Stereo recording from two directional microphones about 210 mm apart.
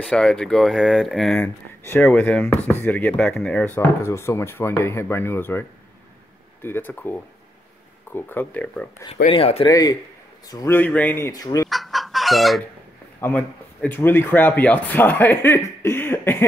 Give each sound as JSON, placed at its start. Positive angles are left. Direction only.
{"t": 0.0, "sound": "speech", "side_deg": 5}
{"t": 9.1, "sound": "speech", "side_deg": 30}
{"t": 11.7, "sound": "chicken", "side_deg": 0}
{"t": 13.2, "sound": "speech", "side_deg": 5}